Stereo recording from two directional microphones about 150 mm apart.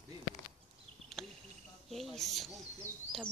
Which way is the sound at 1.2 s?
Centre (ahead or behind).